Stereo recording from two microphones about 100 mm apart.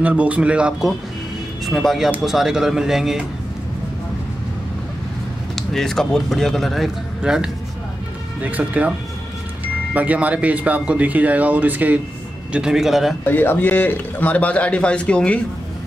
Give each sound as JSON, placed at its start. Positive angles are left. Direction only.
{"t": 0.0, "sound": "speech", "side_deg": -15}
{"t": 5.6, "sound": "speech", "side_deg": 5}
{"t": 8.4, "sound": "speech", "side_deg": -15}
{"t": 9.9, "sound": "speech", "side_deg": -15}
{"t": 12.5, "sound": "speech", "side_deg": -5}
{"t": 13.3, "sound": "a man's voice", "side_deg": 20}